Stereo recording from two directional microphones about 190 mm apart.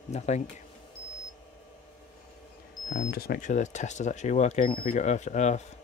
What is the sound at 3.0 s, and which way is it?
Speech, 55° left (ahead or behind).